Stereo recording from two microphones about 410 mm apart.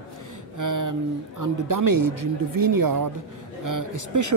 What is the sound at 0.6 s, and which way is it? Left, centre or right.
Speech, right.